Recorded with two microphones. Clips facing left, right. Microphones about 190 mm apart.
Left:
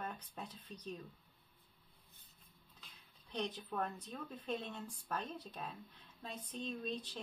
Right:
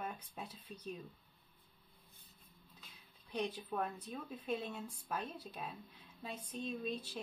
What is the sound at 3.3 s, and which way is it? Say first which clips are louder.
Speech: right 2 dB; 10° right (ahead or behind).